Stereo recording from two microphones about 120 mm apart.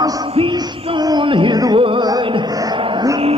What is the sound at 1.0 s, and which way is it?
Music, 40° right (ahead or behind).